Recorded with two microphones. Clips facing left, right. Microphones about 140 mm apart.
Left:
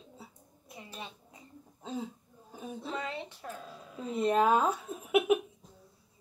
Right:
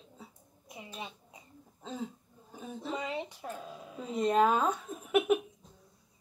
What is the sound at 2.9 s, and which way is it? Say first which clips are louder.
Speech: right 3 dB; 15° right (ahead or behind).